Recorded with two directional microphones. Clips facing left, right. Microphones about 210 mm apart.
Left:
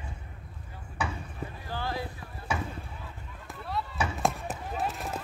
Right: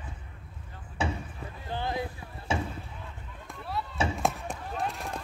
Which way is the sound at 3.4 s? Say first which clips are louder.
Left 1 dB; centre (ahead or behind).